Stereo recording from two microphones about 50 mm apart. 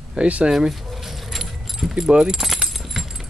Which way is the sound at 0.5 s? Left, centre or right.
Centre.